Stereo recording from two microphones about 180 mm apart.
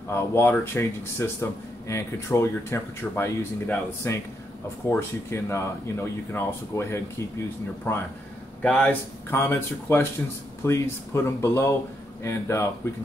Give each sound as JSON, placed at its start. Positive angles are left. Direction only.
{"t": 0.1, "sound": "speech", "side_deg": 15}